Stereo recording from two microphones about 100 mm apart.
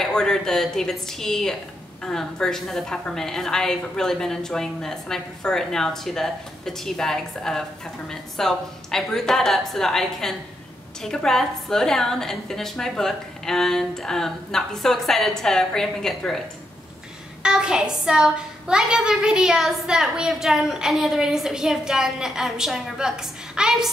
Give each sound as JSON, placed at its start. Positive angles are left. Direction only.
{"t": 0.0, "sound": "a woman's voice", "side_deg": 5}
{"t": 17.4, "sound": "a child's voice", "side_deg": -10}